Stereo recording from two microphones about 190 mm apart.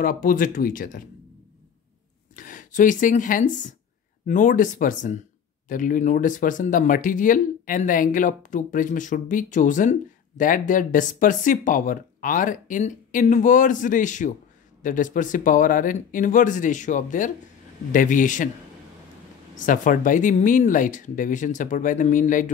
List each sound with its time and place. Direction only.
0.0 s speech: 50° left (ahead or behind)
2.3 s speech: 45° left (ahead or behind)
19.5 s speech: 45° left (ahead or behind)